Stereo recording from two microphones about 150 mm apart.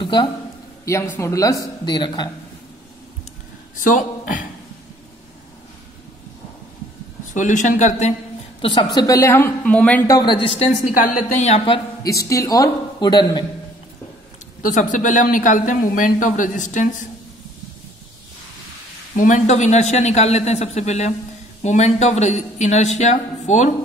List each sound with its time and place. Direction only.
0.0 s a sound: 30° left (ahead or behind)
0.8 s a man's voice: 15° left (ahead or behind)
3.7 s speech: 60° left (ahead or behind)
7.3 s speech: 55° left (ahead or behind)
8.5 s a woman's voice: 30° left (ahead or behind); by 10.0 s 10° left (ahead or behind)
10.0 s a man's voice: 25° left (ahead or behind)
10.6 s speech: 50° left (ahead or behind); by 12.1 s 35° left (ahead or behind)
12.1 s a man's voice: 20° left (ahead or behind)
14.6 s speech: 60° left (ahead or behind)
19.1 s speech: 60° left (ahead or behind)